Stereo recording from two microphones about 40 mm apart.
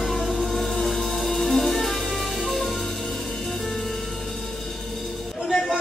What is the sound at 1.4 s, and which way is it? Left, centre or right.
Music, centre.